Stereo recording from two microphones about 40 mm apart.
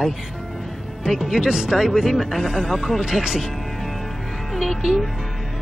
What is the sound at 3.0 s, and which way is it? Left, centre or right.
Speech, centre.